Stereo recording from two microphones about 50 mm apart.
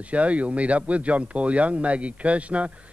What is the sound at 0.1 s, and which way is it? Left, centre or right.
Speech, right.